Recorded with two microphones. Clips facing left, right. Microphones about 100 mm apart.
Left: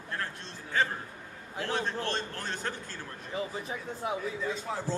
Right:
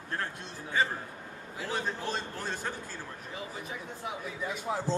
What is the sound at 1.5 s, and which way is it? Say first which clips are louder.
A man's voice: left 2 dB; 5° right (ahead or behind).